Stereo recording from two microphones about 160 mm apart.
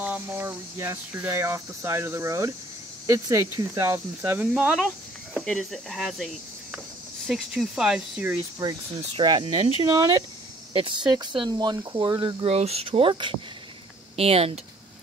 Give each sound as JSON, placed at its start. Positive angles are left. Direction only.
{"t": 0.0, "sound": "speech", "side_deg": -10}
{"t": 8.6, "sound": "speech", "side_deg": -20}